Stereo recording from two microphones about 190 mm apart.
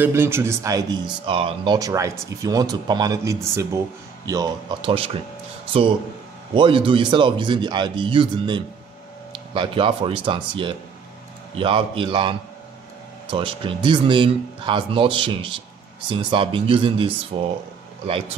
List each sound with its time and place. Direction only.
0.0 s speech: 10° right (ahead or behind); by 17.5 s 30° right (ahead or behind)